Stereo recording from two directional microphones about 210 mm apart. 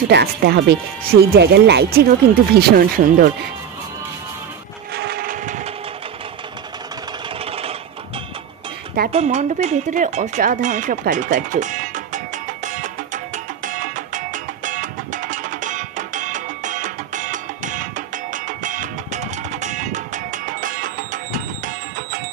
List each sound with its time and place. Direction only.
0.1 s speech: 50° right (ahead or behind)
4.9 s wood: 50° right (ahead or behind)
9.1 s speech: 30° right (ahead or behind)
12.6 s music: 35° right (ahead or behind)